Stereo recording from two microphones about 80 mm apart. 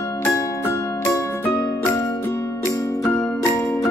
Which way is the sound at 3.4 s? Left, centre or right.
Left.